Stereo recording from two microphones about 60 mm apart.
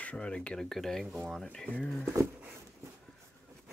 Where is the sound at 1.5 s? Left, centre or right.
Centre.